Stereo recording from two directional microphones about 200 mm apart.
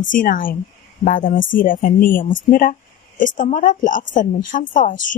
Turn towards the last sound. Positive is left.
turn(degrees=40)  # may be behind; listen again after turning